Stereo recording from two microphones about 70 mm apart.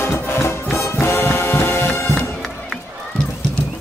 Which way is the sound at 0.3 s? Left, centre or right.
Left.